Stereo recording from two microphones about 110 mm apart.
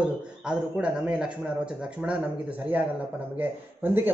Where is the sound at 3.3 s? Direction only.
20° right (ahead or behind).